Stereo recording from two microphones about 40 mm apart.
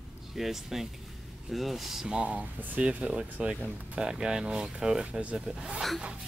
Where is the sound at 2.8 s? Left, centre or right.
Right.